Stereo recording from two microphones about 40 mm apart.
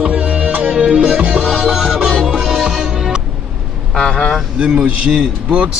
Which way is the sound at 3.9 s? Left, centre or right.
Left.